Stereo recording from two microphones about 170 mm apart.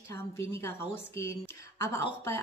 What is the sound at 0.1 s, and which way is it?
Speech, 15° left (ahead or behind).